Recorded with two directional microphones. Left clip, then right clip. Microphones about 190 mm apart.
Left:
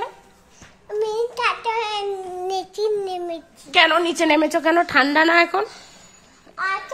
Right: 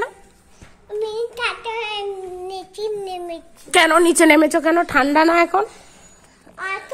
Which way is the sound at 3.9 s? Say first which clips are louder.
Right 5 dB; 25° right (ahead or behind).